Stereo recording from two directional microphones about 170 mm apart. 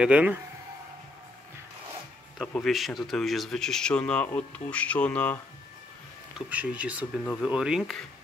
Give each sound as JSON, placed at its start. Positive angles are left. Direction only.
{"t": 0.0, "sound": "speech", "side_deg": -10}
{"t": 2.3, "sound": "speech", "side_deg": 0}
{"t": 6.3, "sound": "speech", "side_deg": -10}